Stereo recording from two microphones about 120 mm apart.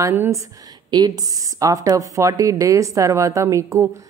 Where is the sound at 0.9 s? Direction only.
35° right (ahead or behind).